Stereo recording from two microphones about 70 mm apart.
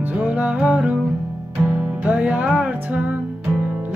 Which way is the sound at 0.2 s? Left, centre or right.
Centre.